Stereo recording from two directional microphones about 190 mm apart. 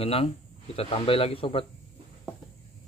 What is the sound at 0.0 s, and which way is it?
Speech, 30° left (ahead or behind).